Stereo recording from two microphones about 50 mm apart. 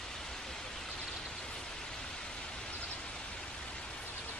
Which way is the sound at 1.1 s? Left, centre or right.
Centre.